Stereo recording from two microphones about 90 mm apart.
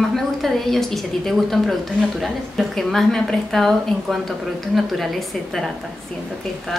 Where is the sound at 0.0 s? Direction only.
Centre (ahead or behind).